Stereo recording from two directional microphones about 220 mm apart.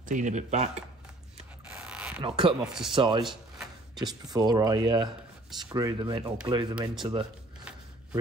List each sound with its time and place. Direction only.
0.1 s speech: 35° right (ahead or behind)
1.7 s mechanisms: 5° right (ahead or behind)
2.2 s speech: 20° right (ahead or behind)
2.6 s speech: centre (ahead or behind)
2.9 s speech: 20° right (ahead or behind)